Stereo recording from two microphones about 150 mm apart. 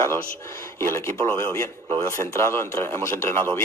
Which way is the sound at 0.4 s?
20° left (ahead or behind).